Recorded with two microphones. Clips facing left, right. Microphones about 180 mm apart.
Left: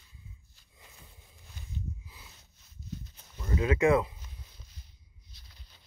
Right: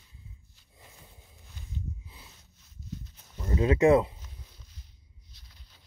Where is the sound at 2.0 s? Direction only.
25° right (ahead or behind).